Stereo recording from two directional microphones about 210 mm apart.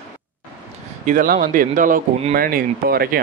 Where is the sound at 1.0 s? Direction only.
40° right (ahead or behind).